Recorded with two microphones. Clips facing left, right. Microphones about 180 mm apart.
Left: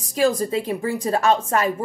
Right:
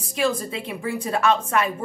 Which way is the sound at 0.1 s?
35° left (ahead or behind).